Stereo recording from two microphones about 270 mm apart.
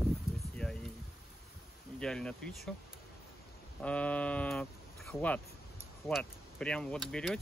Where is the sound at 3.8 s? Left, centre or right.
Centre.